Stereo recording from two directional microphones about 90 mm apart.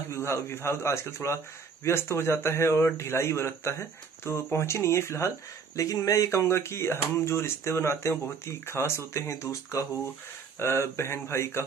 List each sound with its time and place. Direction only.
0.1 s speech: 30° left (ahead or behind)